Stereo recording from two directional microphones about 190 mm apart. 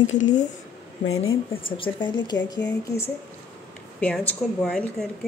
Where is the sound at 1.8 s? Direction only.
25° left (ahead or behind).